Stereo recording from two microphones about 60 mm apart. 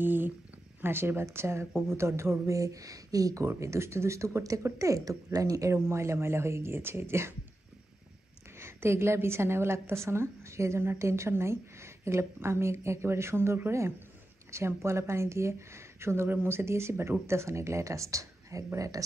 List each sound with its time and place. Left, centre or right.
0.0 s a woman's voice: right
3.4 s a woman's voice: right
8.5 s a woman's voice: right